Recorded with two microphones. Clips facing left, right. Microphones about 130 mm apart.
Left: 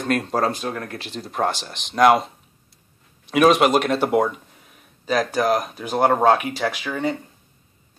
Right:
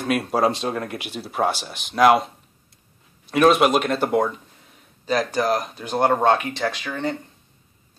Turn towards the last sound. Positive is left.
turn(degrees=5)  # may be behind; listen again after turning